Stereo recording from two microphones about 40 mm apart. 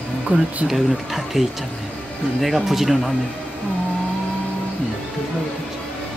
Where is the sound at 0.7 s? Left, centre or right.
Centre.